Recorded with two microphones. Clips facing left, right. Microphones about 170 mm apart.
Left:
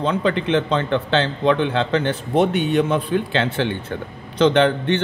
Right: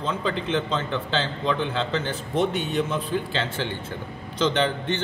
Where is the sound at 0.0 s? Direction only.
65° left (ahead or behind).